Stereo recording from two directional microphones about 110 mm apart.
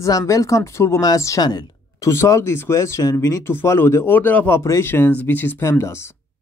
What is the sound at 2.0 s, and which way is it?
Speech, 25° left (ahead or behind).